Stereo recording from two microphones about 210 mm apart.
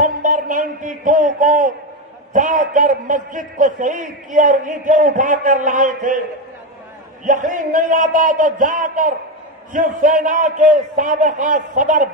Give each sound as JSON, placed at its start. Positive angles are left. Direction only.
{"t": 0.0, "sound": "a man's voice", "side_deg": -40}
{"t": 7.2, "sound": "a man's voice", "side_deg": -40}